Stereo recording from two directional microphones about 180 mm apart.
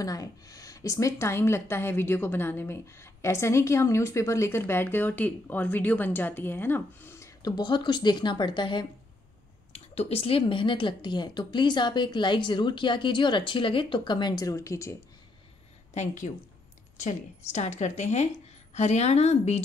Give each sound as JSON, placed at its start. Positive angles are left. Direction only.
{"t": 0.0, "sound": "a woman's voice", "side_deg": 20}
{"t": 15.9, "sound": "speech", "side_deg": 40}